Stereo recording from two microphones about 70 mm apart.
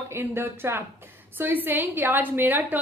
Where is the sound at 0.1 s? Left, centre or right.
Right.